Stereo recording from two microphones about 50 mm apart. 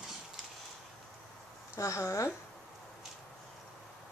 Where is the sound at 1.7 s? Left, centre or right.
Left.